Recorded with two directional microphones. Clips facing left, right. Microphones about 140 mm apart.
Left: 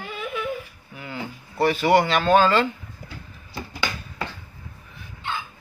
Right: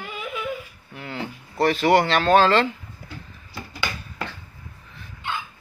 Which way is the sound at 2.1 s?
5° left (ahead or behind).